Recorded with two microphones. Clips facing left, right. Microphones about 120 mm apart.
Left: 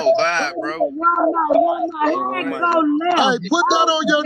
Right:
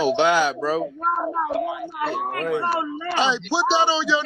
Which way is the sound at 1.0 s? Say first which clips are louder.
Left 10 dB; 65° left (ahead or behind).